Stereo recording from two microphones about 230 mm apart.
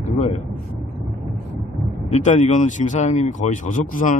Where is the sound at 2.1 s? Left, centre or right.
Left.